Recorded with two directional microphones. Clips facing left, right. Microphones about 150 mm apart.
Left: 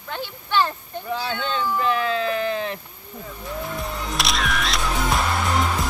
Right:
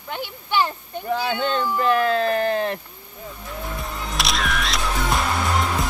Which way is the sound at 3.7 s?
Centre (ahead or behind).